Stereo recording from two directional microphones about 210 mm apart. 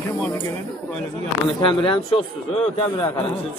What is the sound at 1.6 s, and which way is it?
A man's voice, 25° left (ahead or behind).